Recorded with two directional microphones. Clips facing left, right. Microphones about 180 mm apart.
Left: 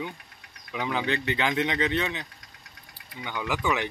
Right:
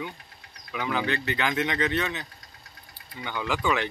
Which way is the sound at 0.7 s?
20° left (ahead or behind).